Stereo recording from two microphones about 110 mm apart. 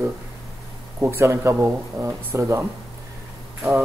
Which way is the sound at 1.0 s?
25° right (ahead or behind).